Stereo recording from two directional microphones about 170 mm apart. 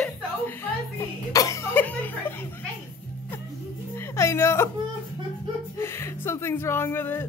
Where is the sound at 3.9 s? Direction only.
15° left (ahead or behind).